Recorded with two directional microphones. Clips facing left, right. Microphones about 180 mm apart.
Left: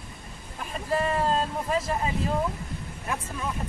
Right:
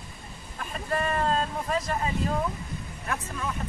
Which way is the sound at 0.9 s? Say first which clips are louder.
Left 2 dB; 25° left (ahead or behind).